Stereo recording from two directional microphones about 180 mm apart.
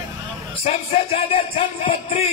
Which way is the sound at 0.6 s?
35° left (ahead or behind).